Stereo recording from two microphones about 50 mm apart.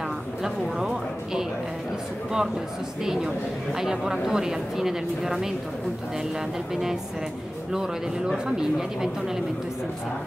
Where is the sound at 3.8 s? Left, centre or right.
Centre.